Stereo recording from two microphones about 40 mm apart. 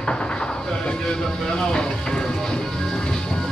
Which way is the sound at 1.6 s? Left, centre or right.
Left.